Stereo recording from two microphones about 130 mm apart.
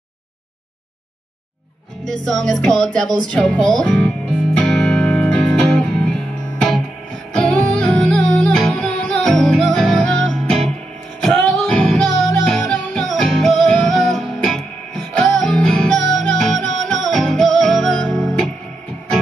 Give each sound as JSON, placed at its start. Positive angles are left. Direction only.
{"t": 2.0, "sound": "music", "side_deg": 5}
{"t": 7.3, "sound": "music", "side_deg": 5}